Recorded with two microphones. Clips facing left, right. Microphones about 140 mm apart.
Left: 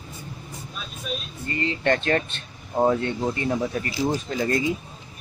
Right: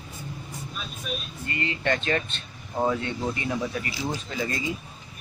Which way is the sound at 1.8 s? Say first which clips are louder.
Left 4 dB; 50° left (ahead or behind).